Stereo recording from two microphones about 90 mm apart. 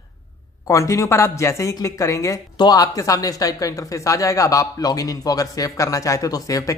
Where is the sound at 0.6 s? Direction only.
35° left (ahead or behind).